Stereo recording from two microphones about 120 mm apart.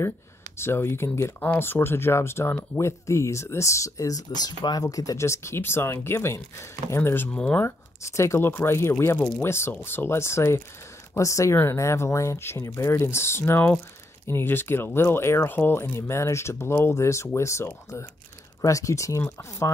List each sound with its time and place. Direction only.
0.6 s speech: 20° left (ahead or behind)
7.6 s speech: 25° left (ahead or behind)